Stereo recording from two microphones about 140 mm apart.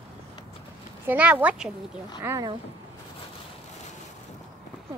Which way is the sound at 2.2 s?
20° right (ahead or behind).